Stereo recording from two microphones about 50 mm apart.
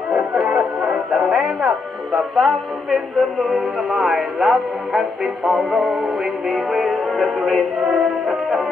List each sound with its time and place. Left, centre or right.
0.5 s music: right
1.1 s music: centre